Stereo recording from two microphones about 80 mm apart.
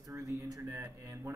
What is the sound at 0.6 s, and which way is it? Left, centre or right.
Speech, right.